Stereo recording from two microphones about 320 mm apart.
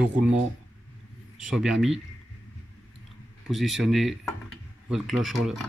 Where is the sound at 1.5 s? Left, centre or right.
Centre.